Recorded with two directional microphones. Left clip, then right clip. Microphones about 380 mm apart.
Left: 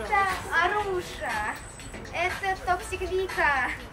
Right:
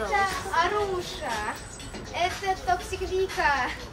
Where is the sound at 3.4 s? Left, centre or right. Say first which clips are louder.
Even; centre.